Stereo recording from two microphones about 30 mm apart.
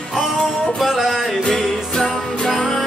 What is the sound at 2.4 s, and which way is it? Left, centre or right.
Music, centre.